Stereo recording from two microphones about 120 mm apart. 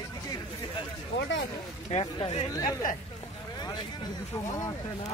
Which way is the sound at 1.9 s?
55° left (ahead or behind).